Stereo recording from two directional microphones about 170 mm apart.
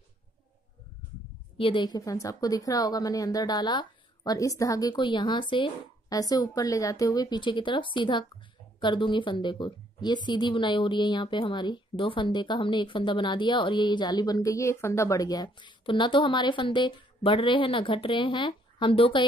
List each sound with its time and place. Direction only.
1.6 s a woman's voice: 30° left (ahead or behind)